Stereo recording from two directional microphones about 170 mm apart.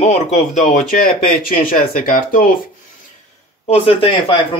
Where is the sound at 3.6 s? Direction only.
35° left (ahead or behind).